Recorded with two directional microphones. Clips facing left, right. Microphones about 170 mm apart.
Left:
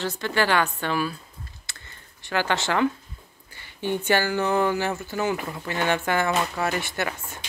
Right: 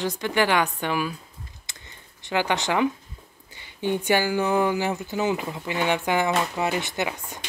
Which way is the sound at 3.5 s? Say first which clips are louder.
Right 1 dB; 15° right (ahead or behind).